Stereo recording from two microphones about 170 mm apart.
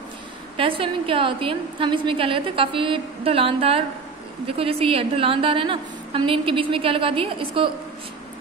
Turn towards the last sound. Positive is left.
turn(degrees=-30)  # may be behind; listen again after turning